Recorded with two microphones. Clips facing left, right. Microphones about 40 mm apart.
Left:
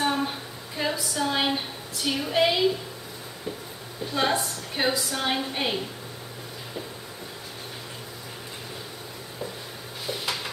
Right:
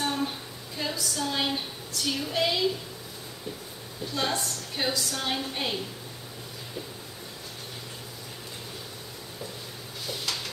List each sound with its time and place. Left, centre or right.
0.0 s music: centre
4.0 s a woman's voice: centre
10.0 s a sound: centre